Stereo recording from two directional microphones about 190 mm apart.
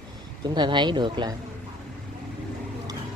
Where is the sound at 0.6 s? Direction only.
25° right (ahead or behind).